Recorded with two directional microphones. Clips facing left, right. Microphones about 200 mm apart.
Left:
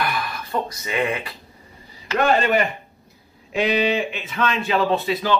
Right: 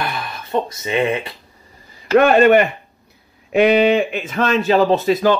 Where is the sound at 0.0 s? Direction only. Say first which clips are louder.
Even; 25° right (ahead or behind).